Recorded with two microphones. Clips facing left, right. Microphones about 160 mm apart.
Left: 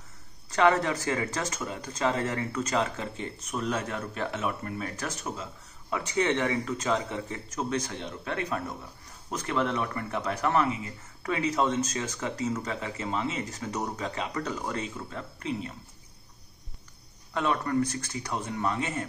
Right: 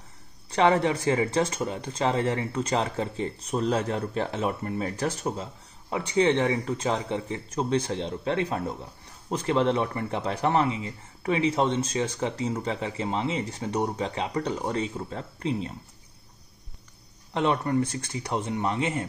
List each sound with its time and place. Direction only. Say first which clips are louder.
0.5 s speech: right 2 dB; 30° right (ahead or behind)
17.3 s speech: right 3 dB; 25° right (ahead or behind)